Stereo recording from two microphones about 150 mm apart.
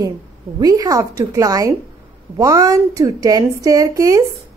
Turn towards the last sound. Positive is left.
turn(degrees=-20)  # may be behind; listen again after turning